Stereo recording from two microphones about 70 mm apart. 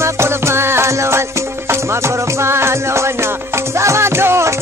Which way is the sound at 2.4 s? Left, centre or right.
Right.